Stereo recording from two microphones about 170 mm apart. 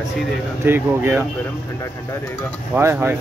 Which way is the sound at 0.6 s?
15° right (ahead or behind).